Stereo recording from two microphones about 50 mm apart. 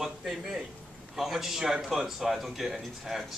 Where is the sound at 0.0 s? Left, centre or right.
Centre.